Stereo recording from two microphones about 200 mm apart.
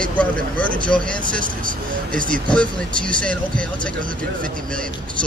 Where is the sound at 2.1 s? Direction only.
5° left (ahead or behind).